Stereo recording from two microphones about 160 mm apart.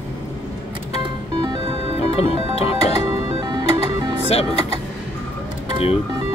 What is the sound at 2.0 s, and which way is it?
Music, 40° left (ahead or behind).